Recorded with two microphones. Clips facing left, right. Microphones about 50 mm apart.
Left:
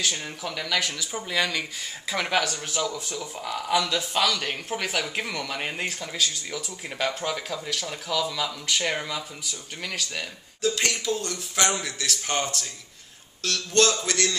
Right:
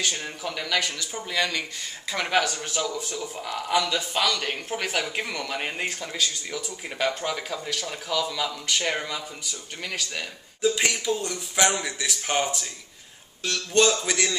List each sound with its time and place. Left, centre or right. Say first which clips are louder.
0.0 s speech: even; centre